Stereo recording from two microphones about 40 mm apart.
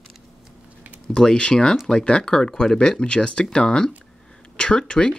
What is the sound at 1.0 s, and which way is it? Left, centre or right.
Speech, left.